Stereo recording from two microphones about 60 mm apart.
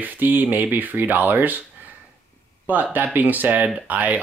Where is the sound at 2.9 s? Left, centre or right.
Right.